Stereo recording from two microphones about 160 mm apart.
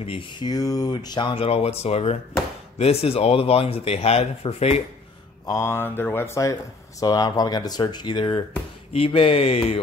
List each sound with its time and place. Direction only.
0.0 s speech: 35° left (ahead or behind)
5.4 s speech: 20° left (ahead or behind); by 9.8 s 40° left (ahead or behind)